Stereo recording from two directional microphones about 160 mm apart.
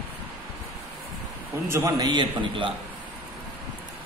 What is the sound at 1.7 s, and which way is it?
A man's voice, 20° right (ahead or behind).